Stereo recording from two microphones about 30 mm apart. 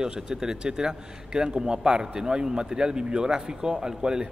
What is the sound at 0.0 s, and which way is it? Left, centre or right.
A man's voice, right.